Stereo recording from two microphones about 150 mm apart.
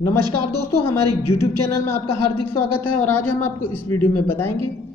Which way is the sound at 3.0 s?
15° left (ahead or behind).